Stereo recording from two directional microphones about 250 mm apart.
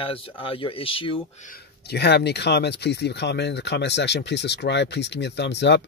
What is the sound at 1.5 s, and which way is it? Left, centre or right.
Speech, left.